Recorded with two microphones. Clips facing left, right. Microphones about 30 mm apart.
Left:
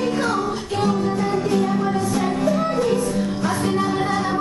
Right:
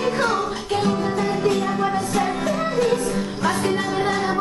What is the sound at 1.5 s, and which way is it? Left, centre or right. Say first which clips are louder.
Music: left 1 dB; right.